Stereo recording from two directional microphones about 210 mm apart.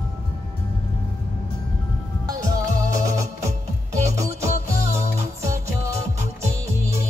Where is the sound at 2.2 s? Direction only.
15° right (ahead or behind).